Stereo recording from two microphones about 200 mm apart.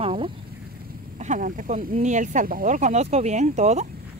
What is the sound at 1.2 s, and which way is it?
Speech, 40° right (ahead or behind).